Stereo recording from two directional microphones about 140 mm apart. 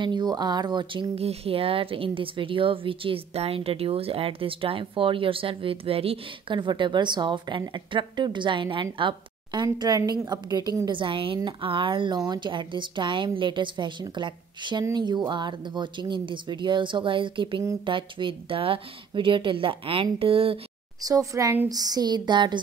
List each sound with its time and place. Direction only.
0.0 s speech: 30° right (ahead or behind)
21.0 s speech: 25° right (ahead or behind)